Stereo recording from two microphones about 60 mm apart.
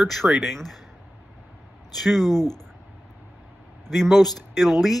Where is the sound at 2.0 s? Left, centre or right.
Centre.